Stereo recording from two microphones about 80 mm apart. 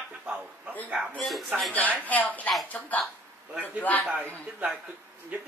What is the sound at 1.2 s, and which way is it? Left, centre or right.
Speech, centre.